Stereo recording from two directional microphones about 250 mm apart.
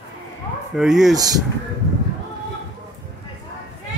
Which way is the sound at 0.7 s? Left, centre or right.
Centre.